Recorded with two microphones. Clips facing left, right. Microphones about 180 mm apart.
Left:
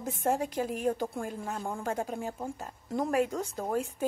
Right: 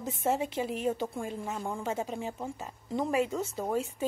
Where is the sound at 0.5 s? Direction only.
45° left (ahead or behind).